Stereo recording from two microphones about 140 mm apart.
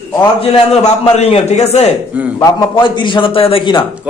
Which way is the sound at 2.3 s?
25° left (ahead or behind).